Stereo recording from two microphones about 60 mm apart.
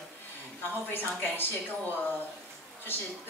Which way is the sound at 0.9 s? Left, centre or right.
Left.